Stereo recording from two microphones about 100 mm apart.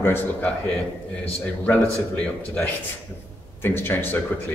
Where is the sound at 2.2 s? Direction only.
10° left (ahead or behind).